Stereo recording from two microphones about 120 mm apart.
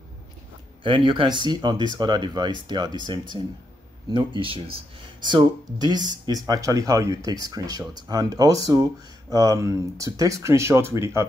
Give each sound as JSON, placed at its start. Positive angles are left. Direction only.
{"t": 0.8, "sound": "speech", "side_deg": -45}
{"t": 4.1, "sound": "speech", "side_deg": -40}
{"t": 5.2, "sound": "speech", "side_deg": -35}